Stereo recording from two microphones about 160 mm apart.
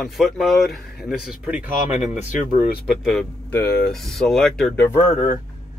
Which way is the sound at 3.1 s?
5° left (ahead or behind).